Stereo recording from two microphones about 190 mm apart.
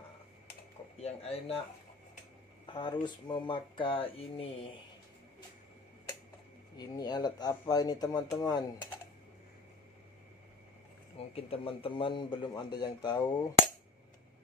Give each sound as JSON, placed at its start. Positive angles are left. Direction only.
{"t": 0.9, "sound": "speech", "side_deg": 35}
{"t": 2.6, "sound": "speech", "side_deg": 25}
{"t": 6.8, "sound": "speech", "side_deg": 20}
{"t": 11.3, "sound": "speech", "side_deg": 30}